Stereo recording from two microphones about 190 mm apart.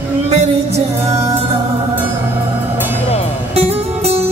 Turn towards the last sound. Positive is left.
turn(degrees=-35)  # may be behind; listen again after turning